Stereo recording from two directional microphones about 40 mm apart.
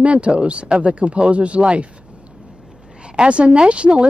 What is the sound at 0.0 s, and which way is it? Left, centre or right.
Speech, right.